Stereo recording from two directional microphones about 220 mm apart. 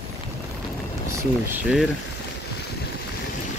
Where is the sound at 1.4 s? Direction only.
10° right (ahead or behind).